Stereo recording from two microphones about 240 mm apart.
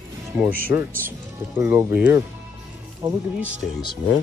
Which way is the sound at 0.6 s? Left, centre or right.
Centre.